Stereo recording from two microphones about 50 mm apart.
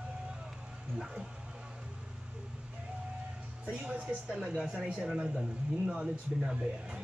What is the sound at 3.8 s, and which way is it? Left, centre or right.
Speech, right.